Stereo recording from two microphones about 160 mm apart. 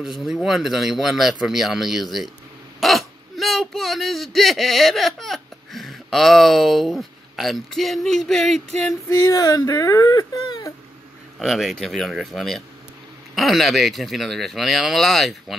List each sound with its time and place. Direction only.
0.0 s speech: centre (ahead or behind)
9.1 s speech: 20° left (ahead or behind)
11.3 s speech: centre (ahead or behind)